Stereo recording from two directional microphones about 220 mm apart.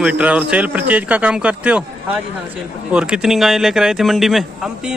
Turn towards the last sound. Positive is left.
turn(degrees=0)  # may be behind; listen again after turning